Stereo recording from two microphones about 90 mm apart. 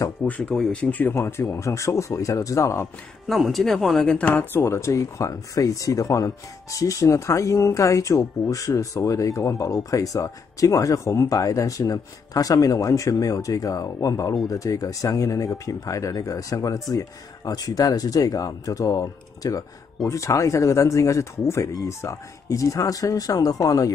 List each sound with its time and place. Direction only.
0.2 s speech: 15° left (ahead or behind)
1.1 s speech: 30° left (ahead or behind)
3.3 s speech: centre (ahead or behind); by 23.9 s 40° left (ahead or behind)